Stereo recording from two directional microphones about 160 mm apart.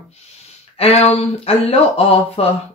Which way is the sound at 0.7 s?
40° left (ahead or behind).